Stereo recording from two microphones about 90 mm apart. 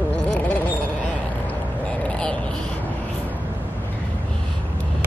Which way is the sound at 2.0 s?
10° left (ahead or behind).